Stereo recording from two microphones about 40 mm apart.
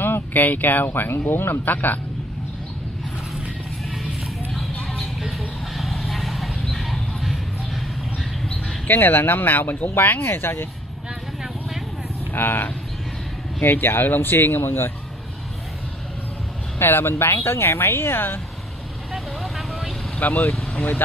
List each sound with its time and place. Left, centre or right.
0.0 s speech: left
5.8 s vehicle: centre
8.8 s speech: left
10.1 s speech: left
12.3 s speech: left
14.3 s speech: left
16.7 s speech: left
19.1 s vehicle: centre
20.2 s speech: left